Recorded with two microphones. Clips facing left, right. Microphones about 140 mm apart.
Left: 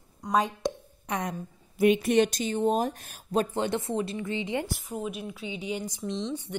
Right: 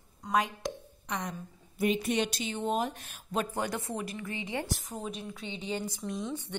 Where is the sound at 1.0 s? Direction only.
60° left (ahead or behind).